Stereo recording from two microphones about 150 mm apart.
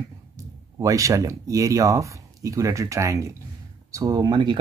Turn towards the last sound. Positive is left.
turn(degrees=-30)  # may be behind; listen again after turning